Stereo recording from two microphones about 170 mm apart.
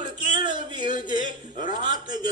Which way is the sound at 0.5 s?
25° right (ahead or behind).